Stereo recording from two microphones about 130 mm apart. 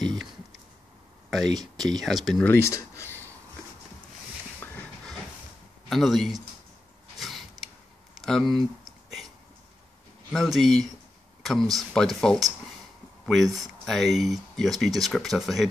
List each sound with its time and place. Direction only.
0.0 s a sound: centre (ahead or behind)
1.5 s speech: 30° right (ahead or behind)
1.9 s speech: 5° left (ahead or behind)
2.4 s speech: 20° left (ahead or behind)
5.9 s speech: centre (ahead or behind)
7.2 s a sound: centre (ahead or behind)
10.3 s speech: centre (ahead or behind)